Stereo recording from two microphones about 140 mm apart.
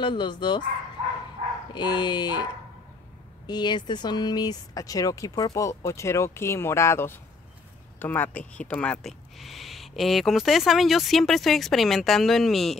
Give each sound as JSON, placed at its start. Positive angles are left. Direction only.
{"t": 0.0, "sound": "speech", "side_deg": 35}
{"t": 1.7, "sound": "speech", "side_deg": 30}
{"t": 3.4, "sound": "speech", "side_deg": 30}